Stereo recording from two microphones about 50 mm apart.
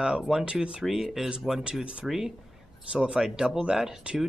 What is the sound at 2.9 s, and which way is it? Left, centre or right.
Speech, right.